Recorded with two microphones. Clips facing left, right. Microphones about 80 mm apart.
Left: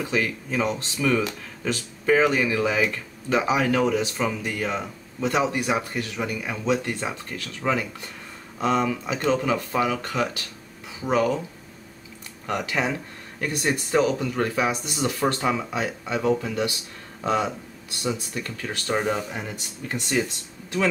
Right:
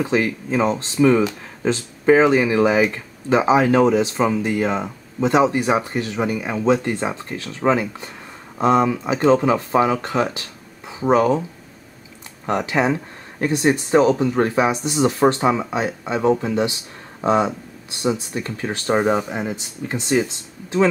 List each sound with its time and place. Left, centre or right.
0.0 s speech: right
12.4 s speech: right